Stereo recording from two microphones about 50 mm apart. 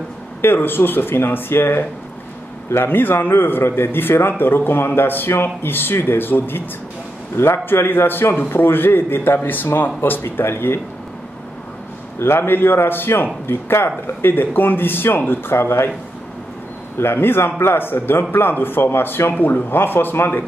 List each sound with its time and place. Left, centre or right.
0.4 s a man's voice: left
12.2 s a man's voice: left
15.5 s speech: left
17.0 s a man's voice: left